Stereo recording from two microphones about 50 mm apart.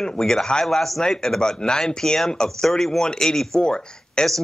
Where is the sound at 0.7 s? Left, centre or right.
Centre.